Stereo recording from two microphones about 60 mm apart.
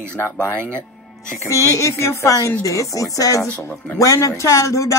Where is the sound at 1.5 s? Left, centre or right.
Left.